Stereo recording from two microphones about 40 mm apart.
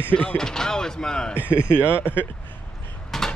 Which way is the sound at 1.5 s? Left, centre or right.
Left.